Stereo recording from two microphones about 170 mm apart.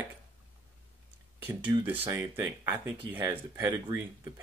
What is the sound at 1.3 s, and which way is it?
Speech, 10° right (ahead or behind).